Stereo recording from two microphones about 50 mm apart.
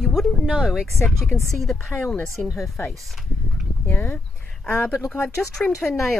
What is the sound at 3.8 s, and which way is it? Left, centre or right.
Speech, left.